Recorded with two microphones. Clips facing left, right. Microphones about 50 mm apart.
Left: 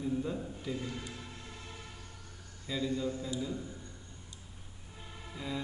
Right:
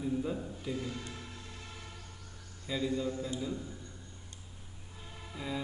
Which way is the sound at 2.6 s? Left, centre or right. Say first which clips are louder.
Right 1 dB; centre.